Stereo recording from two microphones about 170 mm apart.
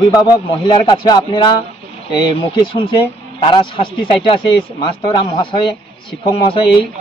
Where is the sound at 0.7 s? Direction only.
25° left (ahead or behind).